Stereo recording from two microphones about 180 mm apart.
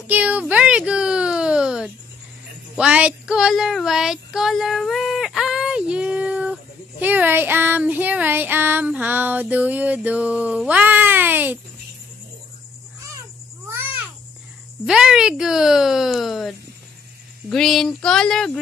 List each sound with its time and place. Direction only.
0.0 s a sound: 10° right (ahead or behind)
13.7 s babbling: 15° right (ahead or behind)
14.9 s speech: 5° right (ahead or behind)